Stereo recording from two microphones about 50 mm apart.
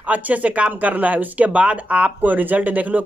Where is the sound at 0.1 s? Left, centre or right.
Right.